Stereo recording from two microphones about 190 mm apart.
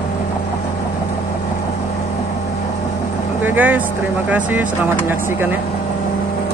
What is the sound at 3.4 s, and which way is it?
Speech, 10° right (ahead or behind).